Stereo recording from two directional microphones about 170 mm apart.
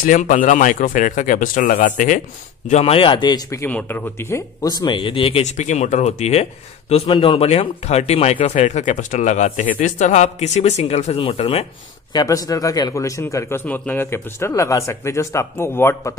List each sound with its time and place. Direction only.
0.0 s speech: 50° left (ahead or behind)
2.7 s speech: 35° left (ahead or behind)
12.1 s a man's voice: 20° left (ahead or behind)